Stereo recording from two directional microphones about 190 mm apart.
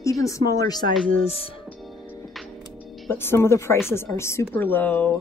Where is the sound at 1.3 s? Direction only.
30° left (ahead or behind).